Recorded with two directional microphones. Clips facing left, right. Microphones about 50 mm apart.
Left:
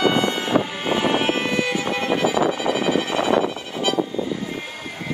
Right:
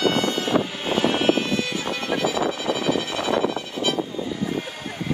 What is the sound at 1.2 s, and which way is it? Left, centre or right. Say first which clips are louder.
Violin: even; left.